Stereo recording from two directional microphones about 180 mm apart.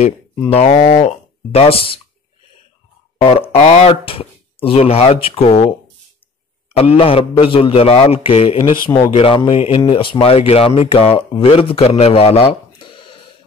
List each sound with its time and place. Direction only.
0.5 s speech: 35° left (ahead or behind)
3.2 s speech: 35° left (ahead or behind)
6.8 s speech: 35° left (ahead or behind)